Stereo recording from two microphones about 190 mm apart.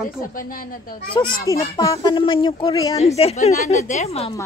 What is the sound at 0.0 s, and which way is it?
Speech, 45° left (ahead or behind).